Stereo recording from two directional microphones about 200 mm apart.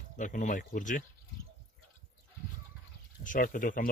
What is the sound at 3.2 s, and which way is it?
Speech, 40° left (ahead or behind).